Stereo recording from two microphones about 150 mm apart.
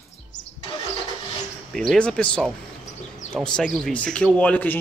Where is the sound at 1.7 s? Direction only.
5° left (ahead or behind).